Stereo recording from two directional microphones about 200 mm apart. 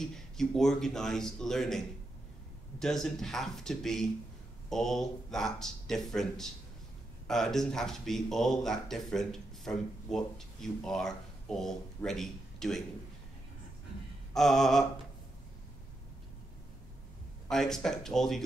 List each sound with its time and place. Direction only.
0.1 s speech: centre (ahead or behind)
2.8 s speech: centre (ahead or behind)
14.3 s speech: centre (ahead or behind)
17.5 s speech: centre (ahead or behind)